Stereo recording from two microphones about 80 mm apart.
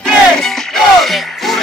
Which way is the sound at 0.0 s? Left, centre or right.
Centre.